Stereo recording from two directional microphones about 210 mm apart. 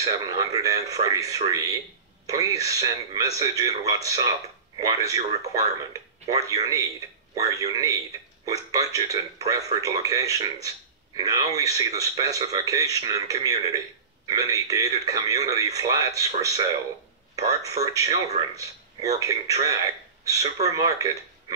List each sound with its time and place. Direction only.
0.0 s speech: 15° right (ahead or behind)